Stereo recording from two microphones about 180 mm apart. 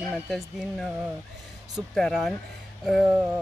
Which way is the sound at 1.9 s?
Centre (ahead or behind).